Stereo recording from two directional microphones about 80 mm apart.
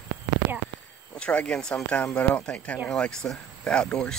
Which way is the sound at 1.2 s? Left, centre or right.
Centre.